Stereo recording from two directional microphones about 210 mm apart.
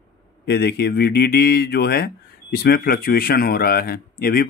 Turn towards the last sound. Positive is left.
turn(degrees=45)  # may be behind; listen again after turning